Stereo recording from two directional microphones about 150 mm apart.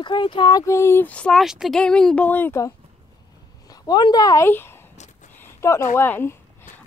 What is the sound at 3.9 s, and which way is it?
Speech, 30° left (ahead or behind).